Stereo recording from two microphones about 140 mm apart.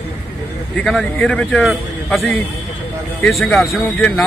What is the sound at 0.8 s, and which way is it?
Speech, 5° left (ahead or behind).